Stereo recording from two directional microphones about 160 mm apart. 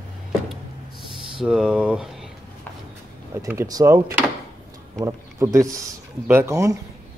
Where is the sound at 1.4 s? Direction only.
5° right (ahead or behind).